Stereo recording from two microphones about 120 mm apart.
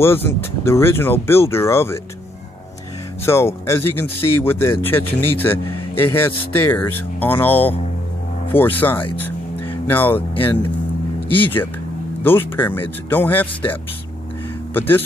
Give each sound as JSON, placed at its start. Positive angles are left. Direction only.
{"t": 0.0, "sound": "speech", "side_deg": 20}
{"t": 3.3, "sound": "speech", "side_deg": 20}
{"t": 10.3, "sound": "speech", "side_deg": 45}
{"t": 11.3, "sound": "speech", "side_deg": 15}